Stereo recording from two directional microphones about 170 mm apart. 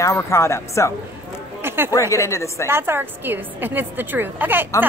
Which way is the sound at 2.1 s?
15° left (ahead or behind).